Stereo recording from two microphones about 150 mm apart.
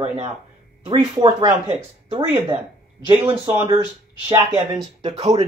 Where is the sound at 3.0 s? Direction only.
35° right (ahead or behind).